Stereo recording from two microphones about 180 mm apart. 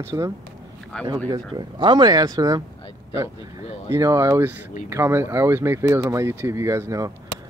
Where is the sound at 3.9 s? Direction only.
20° right (ahead or behind).